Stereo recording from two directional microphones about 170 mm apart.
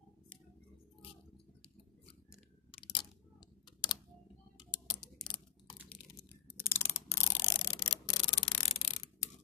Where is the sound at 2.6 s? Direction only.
30° left (ahead or behind).